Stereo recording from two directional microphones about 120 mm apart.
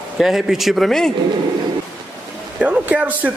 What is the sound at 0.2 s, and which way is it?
Speech, 5° right (ahead or behind).